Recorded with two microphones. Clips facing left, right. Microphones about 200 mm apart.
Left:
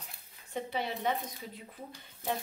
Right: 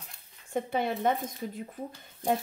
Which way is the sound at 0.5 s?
50° right (ahead or behind).